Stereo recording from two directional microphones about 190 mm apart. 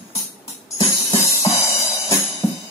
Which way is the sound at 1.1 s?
30° left (ahead or behind).